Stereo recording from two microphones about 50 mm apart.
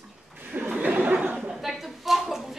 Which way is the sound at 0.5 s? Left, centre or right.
Right.